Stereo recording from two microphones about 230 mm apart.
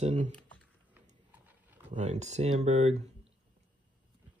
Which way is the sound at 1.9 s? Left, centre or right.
Right.